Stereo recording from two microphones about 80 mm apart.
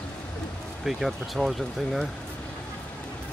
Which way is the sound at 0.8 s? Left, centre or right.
Centre.